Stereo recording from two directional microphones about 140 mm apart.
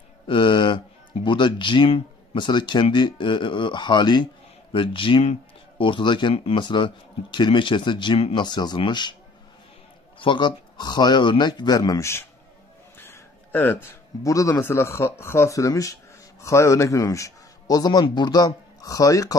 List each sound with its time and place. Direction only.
0.3 s speech: 35° left (ahead or behind)
10.1 s speech: 35° left (ahead or behind); by 12.3 s 20° left (ahead or behind)
13.0 s a sound: 15° left (ahead or behind)
14.2 s speech: 20° left (ahead or behind)